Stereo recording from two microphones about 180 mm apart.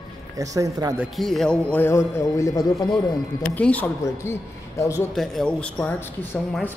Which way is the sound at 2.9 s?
5° left (ahead or behind).